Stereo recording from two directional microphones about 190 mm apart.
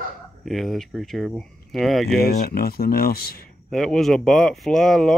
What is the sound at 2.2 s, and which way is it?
Speech, 55° left (ahead or behind).